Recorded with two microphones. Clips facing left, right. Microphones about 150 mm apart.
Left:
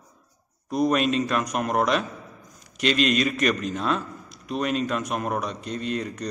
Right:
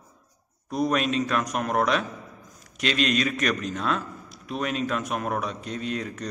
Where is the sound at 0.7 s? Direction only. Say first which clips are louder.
Left 3 dB; centre (ahead or behind).